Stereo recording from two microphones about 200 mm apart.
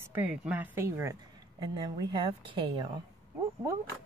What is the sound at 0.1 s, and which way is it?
A woman's voice, 10° right (ahead or behind).